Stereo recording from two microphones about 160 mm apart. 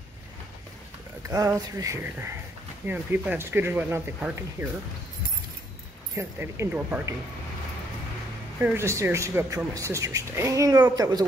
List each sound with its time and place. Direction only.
1.2 s speech: 20° right (ahead or behind)
6.1 s speech: 15° right (ahead or behind)
8.6 s speech: 15° right (ahead or behind)